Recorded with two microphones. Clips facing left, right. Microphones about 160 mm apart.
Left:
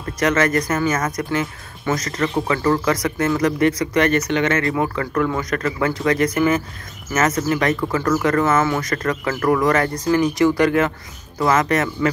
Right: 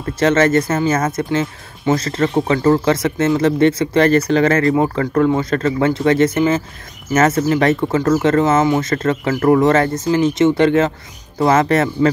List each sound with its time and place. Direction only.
0.2 s speech: 30° right (ahead or behind)